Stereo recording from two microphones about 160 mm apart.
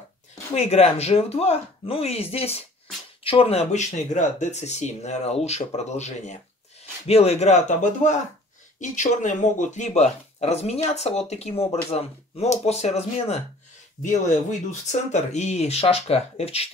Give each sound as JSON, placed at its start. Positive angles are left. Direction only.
{"t": 0.6, "sound": "speech", "side_deg": 40}